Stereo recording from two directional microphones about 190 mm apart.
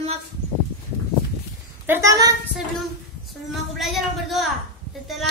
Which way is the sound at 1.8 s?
15° right (ahead or behind).